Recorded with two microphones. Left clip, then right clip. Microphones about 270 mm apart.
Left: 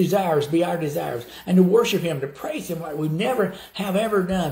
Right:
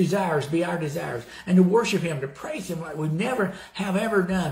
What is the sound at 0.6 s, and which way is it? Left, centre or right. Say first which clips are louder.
Speech: left 4 dB; right.